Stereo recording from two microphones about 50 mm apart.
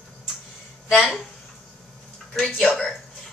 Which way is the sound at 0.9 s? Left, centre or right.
Centre.